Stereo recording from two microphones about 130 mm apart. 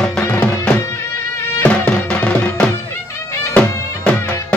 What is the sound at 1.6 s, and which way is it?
Music, 10° left (ahead or behind).